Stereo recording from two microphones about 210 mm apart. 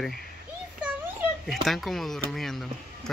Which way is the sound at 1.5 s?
Centre (ahead or behind).